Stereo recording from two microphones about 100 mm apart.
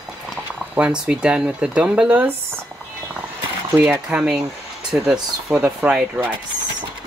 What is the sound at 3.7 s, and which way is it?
Speech, 15° right (ahead or behind).